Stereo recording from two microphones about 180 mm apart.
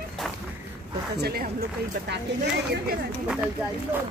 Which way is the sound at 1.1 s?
60° right (ahead or behind).